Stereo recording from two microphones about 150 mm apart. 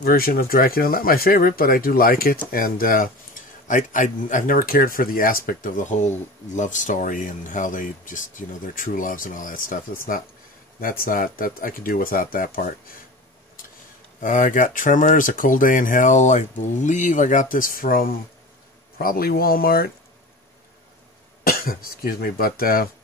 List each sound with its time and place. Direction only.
0.0 s speech: 80° left
3.6 s speech: 60° left (ahead or behind)
14.2 s speech: 60° left (ahead or behind); by 19.9 s 80° left
21.5 s speech: 80° left